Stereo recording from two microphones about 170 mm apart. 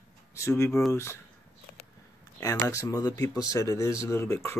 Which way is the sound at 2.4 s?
20° left (ahead or behind).